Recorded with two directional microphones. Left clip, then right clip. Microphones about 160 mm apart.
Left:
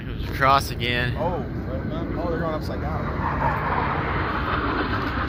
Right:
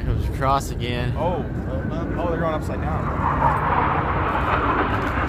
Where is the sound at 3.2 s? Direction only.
30° left (ahead or behind).